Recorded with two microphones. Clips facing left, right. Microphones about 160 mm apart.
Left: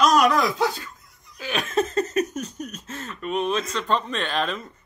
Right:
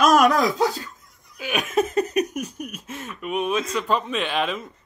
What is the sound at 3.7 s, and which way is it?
Speech, 5° right (ahead or behind).